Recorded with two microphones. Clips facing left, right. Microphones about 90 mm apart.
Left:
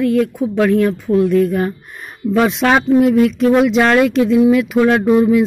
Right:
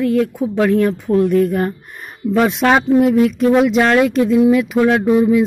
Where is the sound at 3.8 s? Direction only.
20° right (ahead or behind).